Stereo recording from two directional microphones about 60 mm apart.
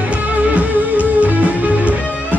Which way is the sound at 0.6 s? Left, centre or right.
Right.